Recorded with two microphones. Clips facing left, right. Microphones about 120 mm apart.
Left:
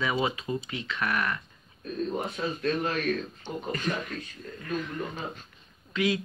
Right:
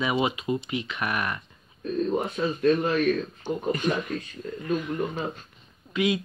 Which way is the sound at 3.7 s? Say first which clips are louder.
Right 5 dB; 20° right (ahead or behind).